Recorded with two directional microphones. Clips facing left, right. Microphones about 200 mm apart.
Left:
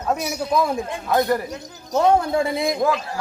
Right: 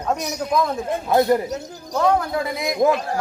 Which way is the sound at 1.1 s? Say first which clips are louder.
Right 3 dB; 20° right (ahead or behind).